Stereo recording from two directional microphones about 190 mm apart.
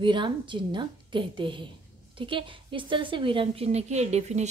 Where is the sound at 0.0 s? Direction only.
25° right (ahead or behind).